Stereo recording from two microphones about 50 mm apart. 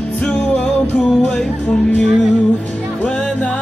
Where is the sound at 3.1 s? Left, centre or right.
Left.